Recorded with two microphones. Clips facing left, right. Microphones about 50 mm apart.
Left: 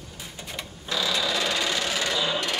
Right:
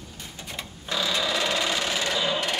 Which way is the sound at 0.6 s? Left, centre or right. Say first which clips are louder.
Even; centre.